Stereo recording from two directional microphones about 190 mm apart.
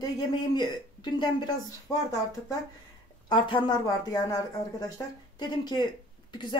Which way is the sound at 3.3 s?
25° left (ahead or behind).